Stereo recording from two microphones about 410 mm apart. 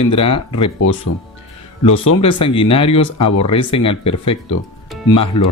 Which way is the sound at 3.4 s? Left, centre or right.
Centre.